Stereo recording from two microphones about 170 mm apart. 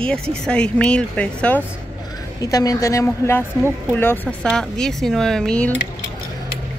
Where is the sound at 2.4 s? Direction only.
20° left (ahead or behind); by 5.7 s 5° left (ahead or behind).